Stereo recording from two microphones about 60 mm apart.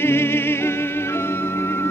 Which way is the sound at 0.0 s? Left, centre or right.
Left.